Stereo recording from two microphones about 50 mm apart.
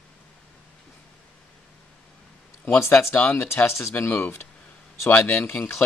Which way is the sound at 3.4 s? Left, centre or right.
Left.